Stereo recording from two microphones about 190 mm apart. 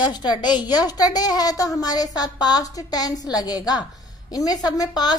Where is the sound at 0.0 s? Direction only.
20° left (ahead or behind).